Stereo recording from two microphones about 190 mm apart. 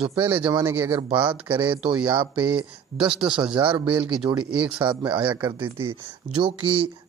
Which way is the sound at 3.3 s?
25° right (ahead or behind).